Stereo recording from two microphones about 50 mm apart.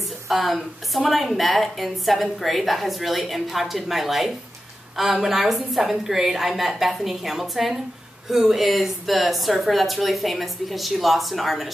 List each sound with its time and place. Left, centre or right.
0.3 s a woman's voice: centre